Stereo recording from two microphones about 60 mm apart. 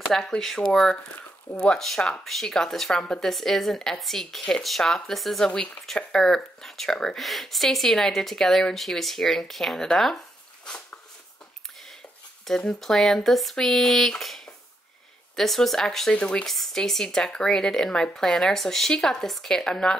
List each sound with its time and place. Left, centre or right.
0.1 s speech: centre
1.6 s speech: centre
12.4 s speech: centre
16.1 s speech: centre
16.4 s speech: centre